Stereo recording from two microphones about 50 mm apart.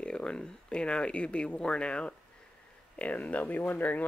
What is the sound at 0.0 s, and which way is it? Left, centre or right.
Speech, centre.